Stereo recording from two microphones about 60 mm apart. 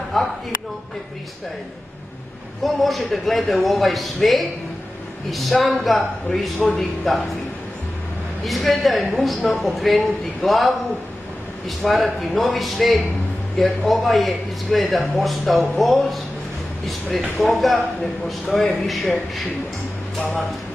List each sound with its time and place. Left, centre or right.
0.2 s a sound: centre
2.6 s speech: centre
8.5 s speech: centre
20.2 s speech: centre